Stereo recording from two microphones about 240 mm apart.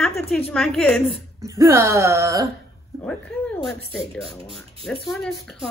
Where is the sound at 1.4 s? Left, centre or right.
Centre.